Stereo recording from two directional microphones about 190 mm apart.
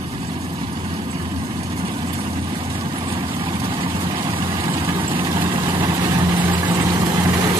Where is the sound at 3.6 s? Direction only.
25° right (ahead or behind).